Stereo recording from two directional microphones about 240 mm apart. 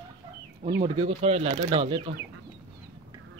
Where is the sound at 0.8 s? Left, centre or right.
Right.